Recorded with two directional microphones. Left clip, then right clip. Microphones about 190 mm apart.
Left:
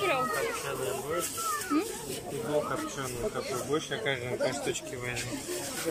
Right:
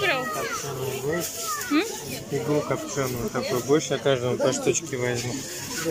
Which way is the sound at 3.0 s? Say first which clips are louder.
Right 6 dB; 30° right (ahead or behind).